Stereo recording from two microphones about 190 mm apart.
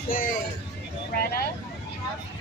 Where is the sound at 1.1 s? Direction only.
55° left (ahead or behind).